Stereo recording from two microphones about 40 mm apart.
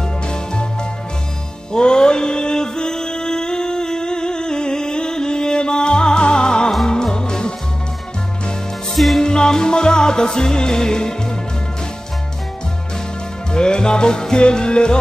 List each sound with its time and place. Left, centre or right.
1.7 s music: left
8.9 s music: centre
9.2 s music: centre
13.5 s music: left